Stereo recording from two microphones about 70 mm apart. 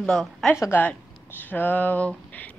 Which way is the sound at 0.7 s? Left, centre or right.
Left.